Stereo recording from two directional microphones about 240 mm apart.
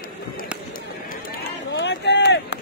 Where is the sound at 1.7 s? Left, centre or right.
Left.